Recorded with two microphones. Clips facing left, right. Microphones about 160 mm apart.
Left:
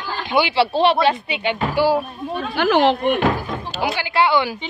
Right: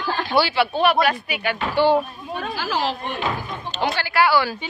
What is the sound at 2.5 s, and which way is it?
Speech, 65° left (ahead or behind).